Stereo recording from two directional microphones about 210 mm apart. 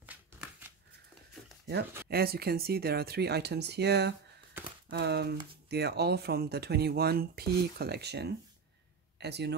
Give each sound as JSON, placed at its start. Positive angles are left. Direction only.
{"t": 0.0, "sound": "shuffling cards", "side_deg": -5}
{"t": 2.0, "sound": "speech", "side_deg": -45}